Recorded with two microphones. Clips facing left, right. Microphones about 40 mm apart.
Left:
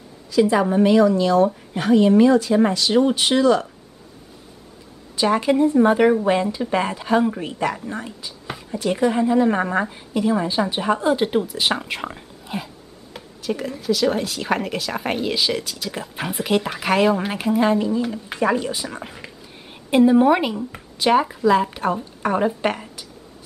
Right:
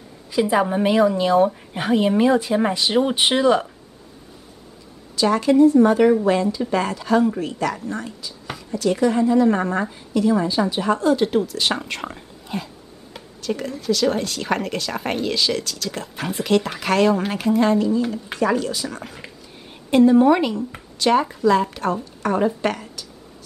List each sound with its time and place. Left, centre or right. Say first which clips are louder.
0.4 s speech: left 2 dB; centre
5.1 s a woman's voice: right 1 dB; centre